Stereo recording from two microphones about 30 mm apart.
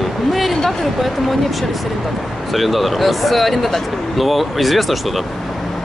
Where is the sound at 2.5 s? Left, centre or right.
Centre.